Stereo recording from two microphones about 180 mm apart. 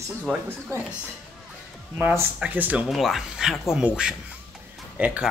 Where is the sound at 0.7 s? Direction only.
15° right (ahead or behind).